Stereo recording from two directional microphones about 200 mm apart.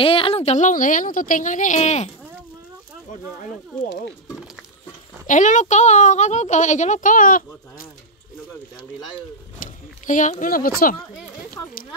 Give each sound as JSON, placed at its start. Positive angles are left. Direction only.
{"t": 0.0, "sound": "speech", "side_deg": 25}
{"t": 5.2, "sound": "speech", "side_deg": 40}
{"t": 9.6, "sound": "a sound", "side_deg": 40}